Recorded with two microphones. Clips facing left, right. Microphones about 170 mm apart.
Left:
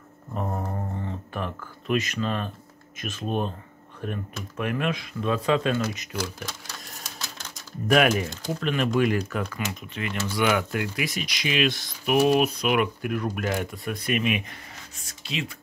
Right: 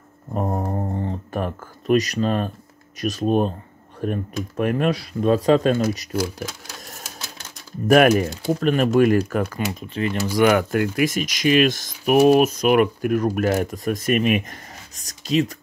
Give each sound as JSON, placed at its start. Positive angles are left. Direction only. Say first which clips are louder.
{"t": 0.3, "sound": "a sound", "louder": "right 6 dB", "side_deg": -40}
{"t": 3.0, "sound": "speech", "louder": "right 8 dB", "side_deg": -40}
{"t": 6.1, "sound": "speech", "louder": "right 7 dB", "side_deg": -10}
{"t": 7.0, "sound": "typewriter", "louder": "right 1 dB", "side_deg": -10}
{"t": 8.5, "sound": "speech", "louder": "right 7 dB", "side_deg": -40}
{"t": 9.6, "sound": "speech", "louder": "right 7 dB", "side_deg": -35}